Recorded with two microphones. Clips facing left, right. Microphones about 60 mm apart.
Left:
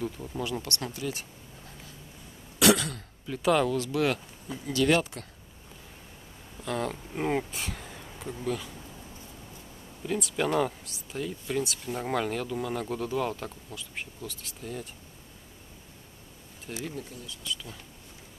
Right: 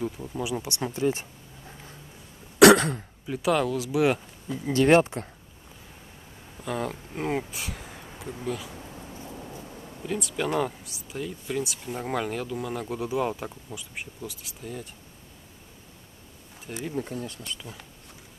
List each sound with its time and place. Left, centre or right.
0.0 s speech: centre
0.9 s speech: right
2.6 s cough: right
2.9 s speech: centre
3.4 s speech: centre
4.6 s speech: right
6.6 s speech: centre
10.0 s speech: centre
16.9 s speech: right